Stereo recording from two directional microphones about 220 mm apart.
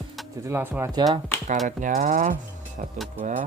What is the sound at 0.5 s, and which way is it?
Speech, 10° right (ahead or behind).